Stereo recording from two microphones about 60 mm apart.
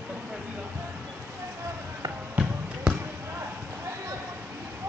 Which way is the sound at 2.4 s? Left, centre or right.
Right.